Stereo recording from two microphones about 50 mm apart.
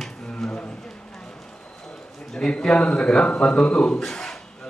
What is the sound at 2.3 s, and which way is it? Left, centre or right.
A man's voice, centre.